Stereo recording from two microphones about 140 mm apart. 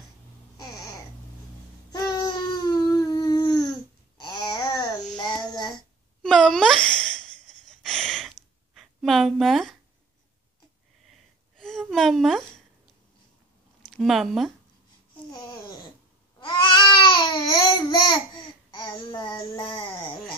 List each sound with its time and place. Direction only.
0.6 s babbling: 25° left (ahead or behind)
5.1 s child singing: 30° left (ahead or behind)
6.2 s sigh: 5° left (ahead or behind)
11.1 s a sound: 5° left (ahead or behind)
13.8 s speech: centre (ahead or behind)
15.3 s babbling: 30° left (ahead or behind)